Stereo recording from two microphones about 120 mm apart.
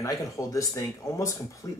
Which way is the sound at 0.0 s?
25° left (ahead or behind).